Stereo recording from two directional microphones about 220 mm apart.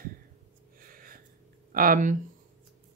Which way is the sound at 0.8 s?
40° right (ahead or behind).